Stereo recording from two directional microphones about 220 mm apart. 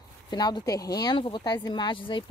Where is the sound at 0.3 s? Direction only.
20° left (ahead or behind).